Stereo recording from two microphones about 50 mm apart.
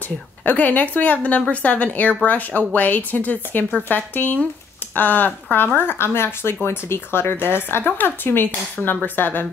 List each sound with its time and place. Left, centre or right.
0.5 s speech: left